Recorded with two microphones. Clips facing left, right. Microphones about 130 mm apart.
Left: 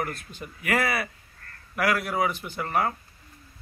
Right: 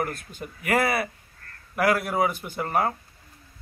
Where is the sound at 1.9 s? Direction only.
Centre (ahead or behind).